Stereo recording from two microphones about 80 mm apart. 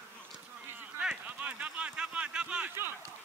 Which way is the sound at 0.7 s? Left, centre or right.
Right.